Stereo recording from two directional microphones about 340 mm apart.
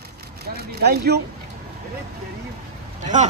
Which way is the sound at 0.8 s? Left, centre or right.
Right.